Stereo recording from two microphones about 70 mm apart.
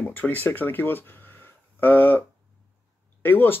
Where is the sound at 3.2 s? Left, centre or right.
Left.